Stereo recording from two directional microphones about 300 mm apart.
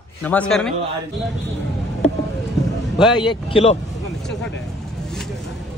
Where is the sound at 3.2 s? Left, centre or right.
Centre.